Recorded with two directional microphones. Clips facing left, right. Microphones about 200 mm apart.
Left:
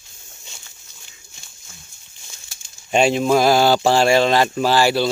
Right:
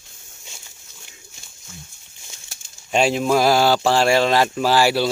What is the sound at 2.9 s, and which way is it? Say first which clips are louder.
Speech: left 2 dB; centre (ahead or behind).